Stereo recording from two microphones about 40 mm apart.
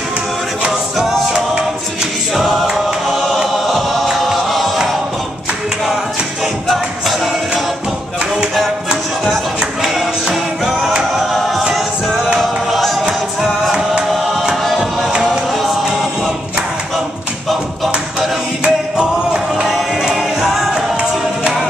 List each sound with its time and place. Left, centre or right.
0.9 s music: centre
2.3 s choir: centre
2.6 s music: centre
6.4 s music: centre
10.3 s music: centre
11.3 s choir: centre
12.4 s music: centre
14.6 s music: centre
18.6 s music: centre
19.7 s music: centre
20.7 s music: centre